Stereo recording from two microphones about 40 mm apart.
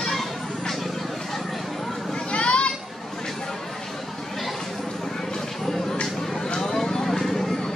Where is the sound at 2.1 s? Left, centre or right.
Left.